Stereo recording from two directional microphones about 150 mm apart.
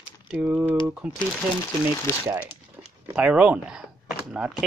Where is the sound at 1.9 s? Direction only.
20° left (ahead or behind).